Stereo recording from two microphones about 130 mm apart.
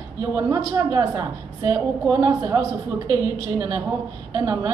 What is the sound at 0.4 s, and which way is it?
A woman's voice, 25° right (ahead or behind).